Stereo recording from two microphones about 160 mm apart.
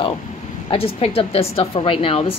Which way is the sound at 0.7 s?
35° left (ahead or behind).